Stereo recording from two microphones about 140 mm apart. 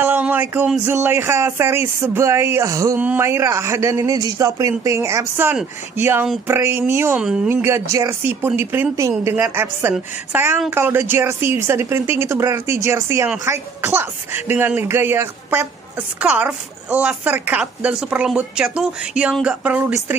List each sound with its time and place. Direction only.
0.0 s a man's voice: 15° right (ahead or behind)
7.4 s a man's voice: 15° right (ahead or behind)